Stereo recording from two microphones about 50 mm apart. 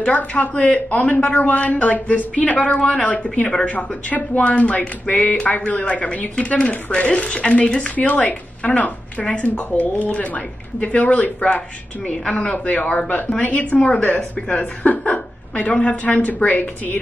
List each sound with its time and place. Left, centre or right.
0.0 s speech: left
3.7 s speech: left
12.1 s speech: centre